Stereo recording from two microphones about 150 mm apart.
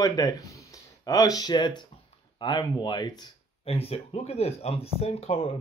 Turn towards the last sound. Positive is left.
turn(degrees=40)  # may be behind; listen again after turning